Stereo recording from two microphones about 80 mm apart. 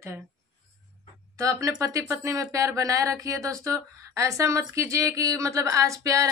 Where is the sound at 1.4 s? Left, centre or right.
Right.